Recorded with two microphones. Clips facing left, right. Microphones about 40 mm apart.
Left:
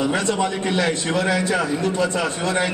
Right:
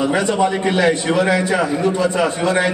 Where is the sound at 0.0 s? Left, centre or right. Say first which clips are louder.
Right 4 dB; centre.